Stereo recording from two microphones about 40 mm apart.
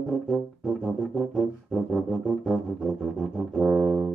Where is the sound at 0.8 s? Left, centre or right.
Centre.